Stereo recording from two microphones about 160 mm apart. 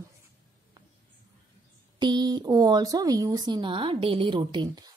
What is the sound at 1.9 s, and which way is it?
Speech, 25° right (ahead or behind).